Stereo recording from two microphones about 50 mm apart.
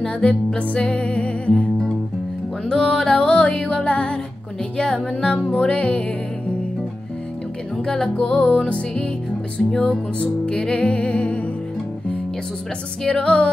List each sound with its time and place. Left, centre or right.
0.0 s music: centre
7.7 s music: centre
13.0 s music: centre